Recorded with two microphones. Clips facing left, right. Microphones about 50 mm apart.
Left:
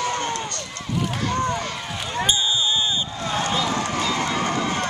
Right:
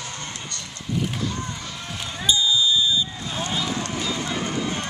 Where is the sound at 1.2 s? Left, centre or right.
Left.